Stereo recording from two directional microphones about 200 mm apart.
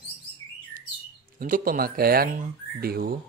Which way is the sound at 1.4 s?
45° right (ahead or behind).